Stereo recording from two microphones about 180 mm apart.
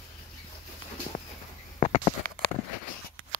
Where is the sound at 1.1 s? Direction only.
35° left (ahead or behind).